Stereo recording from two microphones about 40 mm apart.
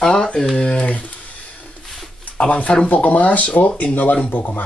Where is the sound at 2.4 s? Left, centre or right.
Left.